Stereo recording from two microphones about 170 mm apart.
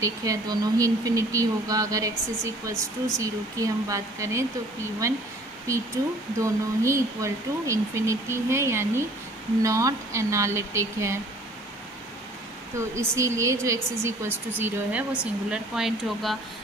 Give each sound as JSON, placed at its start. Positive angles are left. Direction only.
{"t": 0.0, "sound": "speech", "side_deg": -20}
{"t": 12.7, "sound": "speech", "side_deg": -15}